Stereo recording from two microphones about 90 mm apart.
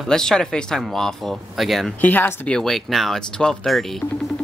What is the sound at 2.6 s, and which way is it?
Speech, centre (ahead or behind).